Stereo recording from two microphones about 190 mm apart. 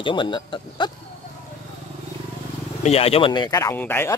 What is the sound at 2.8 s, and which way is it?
A man's voice, 30° left (ahead or behind).